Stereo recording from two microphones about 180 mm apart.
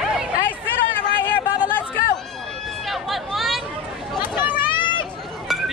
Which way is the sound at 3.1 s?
Centre (ahead or behind).